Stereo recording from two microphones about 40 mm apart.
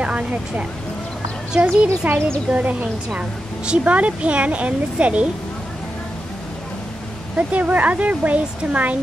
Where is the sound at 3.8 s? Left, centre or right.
Right.